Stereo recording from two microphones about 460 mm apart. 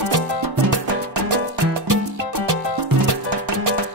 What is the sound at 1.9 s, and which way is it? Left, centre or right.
Music, right.